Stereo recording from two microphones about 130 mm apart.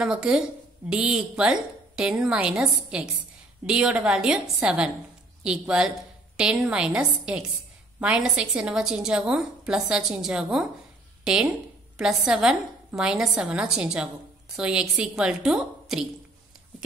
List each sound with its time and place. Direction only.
0.0 s a woman's voice: 5° right (ahead or behind)